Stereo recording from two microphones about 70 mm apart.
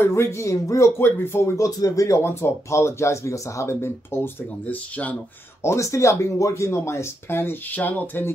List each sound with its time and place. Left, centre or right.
0.0 s speech: left
1.6 s speech: left